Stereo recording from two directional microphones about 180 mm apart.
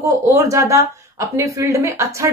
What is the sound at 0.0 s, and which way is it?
Speech, 15° right (ahead or behind).